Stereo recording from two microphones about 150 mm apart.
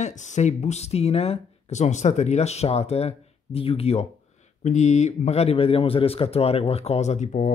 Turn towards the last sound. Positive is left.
turn(degrees=55)  # may be behind; listen again after turning